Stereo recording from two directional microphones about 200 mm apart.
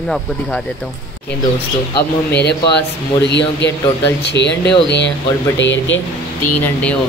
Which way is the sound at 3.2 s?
60° left (ahead or behind).